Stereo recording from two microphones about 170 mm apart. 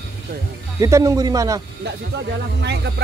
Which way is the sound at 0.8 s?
20° right (ahead or behind).